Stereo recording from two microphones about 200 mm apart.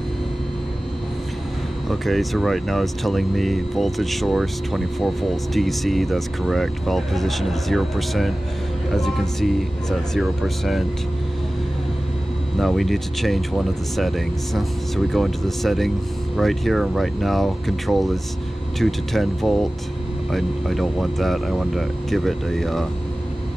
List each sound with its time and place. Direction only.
1.9 s speech: centre (ahead or behind)
12.5 s speech: centre (ahead or behind)